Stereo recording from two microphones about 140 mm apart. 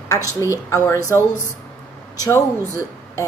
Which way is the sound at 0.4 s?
20° left (ahead or behind).